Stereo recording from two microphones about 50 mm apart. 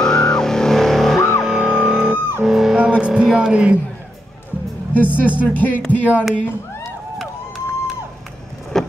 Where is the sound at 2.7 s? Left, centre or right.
Right.